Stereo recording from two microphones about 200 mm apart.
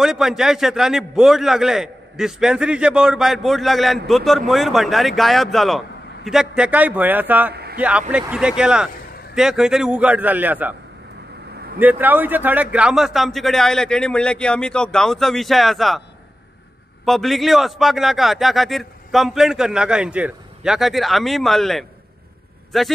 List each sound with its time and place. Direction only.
0.0 s a man's voice: centre (ahead or behind)
7.5 s a sound: 50° right (ahead or behind)
8.1 s a man's voice: 5° right (ahead or behind)
11.8 s a man's voice: 10° right (ahead or behind)
17.0 s a man's voice: centre (ahead or behind)